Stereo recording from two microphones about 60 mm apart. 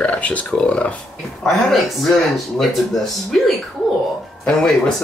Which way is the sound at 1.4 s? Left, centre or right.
Centre.